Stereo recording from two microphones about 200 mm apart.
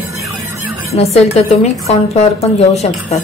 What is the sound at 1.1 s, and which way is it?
A woman's voice, 30° left (ahead or behind).